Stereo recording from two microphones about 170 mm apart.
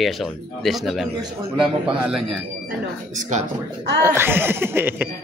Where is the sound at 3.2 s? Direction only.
45° right (ahead or behind).